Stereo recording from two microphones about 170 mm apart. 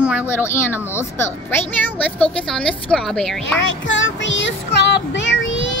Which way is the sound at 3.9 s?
90° left.